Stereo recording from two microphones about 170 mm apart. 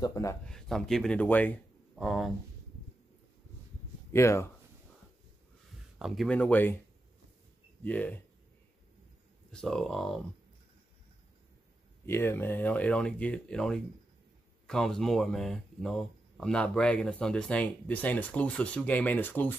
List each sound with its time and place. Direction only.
0.0 s speech: 20° left (ahead or behind)
0.5 s speech: 5° left (ahead or behind)
4.1 s speech: 15° left (ahead or behind)
5.9 s speech: centre (ahead or behind)
7.8 s speech: 10° left (ahead or behind)
9.5 s speech: 5° left (ahead or behind)
12.1 s speech: 15° left (ahead or behind)